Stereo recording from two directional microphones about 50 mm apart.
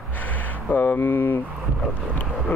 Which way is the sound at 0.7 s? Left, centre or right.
Left.